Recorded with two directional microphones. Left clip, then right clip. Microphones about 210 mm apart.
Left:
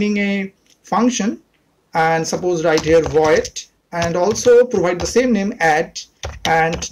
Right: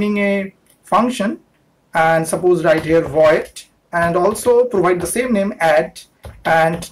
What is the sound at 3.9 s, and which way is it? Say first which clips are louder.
Speech: right 2 dB; 30° left (ahead or behind).